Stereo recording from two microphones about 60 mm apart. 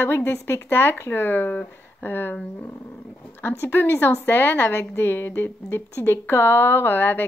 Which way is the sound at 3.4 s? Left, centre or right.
Left.